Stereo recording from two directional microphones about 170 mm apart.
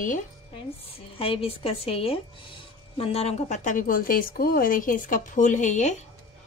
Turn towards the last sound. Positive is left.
turn(degrees=45)  # may be behind; listen again after turning